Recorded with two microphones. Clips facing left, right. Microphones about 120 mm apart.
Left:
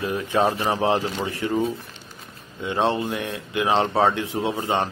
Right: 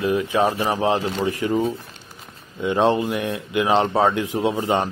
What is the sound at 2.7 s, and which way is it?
Speech, 15° right (ahead or behind).